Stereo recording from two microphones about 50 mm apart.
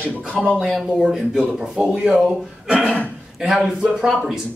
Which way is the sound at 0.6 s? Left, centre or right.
Centre.